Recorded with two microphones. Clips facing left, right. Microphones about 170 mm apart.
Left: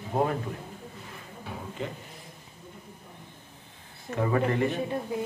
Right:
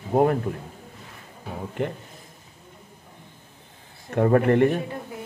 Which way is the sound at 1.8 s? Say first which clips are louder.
Right 8 dB; 60° right (ahead or behind).